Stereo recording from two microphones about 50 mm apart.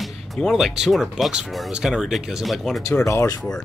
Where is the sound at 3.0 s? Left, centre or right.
Left.